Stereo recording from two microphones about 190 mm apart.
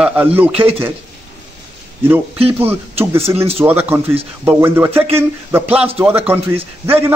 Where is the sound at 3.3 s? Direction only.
30° right (ahead or behind).